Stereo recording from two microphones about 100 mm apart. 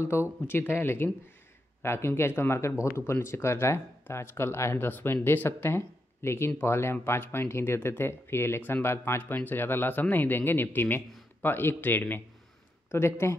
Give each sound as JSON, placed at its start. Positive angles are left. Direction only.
{"t": 0.1, "sound": "speech", "side_deg": 25}